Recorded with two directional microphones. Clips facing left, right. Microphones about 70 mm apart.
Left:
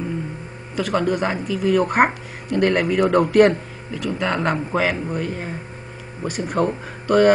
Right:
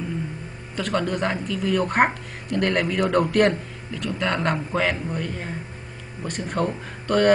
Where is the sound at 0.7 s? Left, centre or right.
Centre.